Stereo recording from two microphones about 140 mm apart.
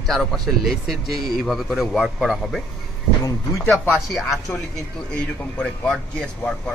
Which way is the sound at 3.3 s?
25° left (ahead or behind).